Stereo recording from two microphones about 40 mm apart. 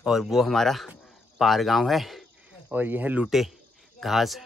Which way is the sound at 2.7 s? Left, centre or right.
Right.